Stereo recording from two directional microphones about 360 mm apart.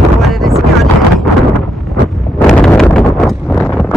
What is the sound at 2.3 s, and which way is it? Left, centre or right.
Wind noise, centre.